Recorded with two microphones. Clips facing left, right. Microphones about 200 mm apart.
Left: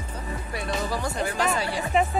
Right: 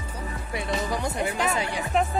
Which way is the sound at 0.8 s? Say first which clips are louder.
Right 1 dB; 20° right (ahead or behind).